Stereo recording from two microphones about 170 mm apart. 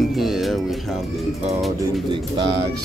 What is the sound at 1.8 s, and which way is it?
Speech, 25° right (ahead or behind).